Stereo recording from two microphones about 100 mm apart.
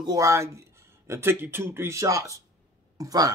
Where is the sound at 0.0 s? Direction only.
35° right (ahead or behind).